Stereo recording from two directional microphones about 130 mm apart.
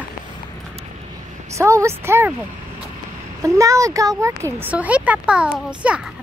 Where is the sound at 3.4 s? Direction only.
25° right (ahead or behind).